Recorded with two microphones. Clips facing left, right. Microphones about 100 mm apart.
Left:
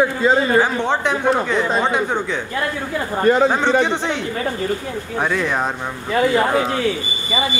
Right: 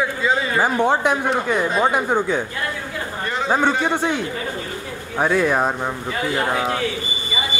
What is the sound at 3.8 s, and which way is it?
Speech, 10° right (ahead or behind).